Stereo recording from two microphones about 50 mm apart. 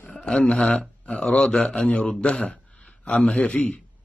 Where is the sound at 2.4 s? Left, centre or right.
Left.